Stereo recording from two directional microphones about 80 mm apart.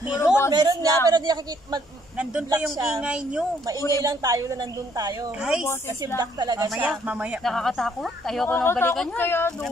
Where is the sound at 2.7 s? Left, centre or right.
Right.